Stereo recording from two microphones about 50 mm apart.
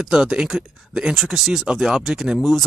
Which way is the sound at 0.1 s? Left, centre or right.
Centre.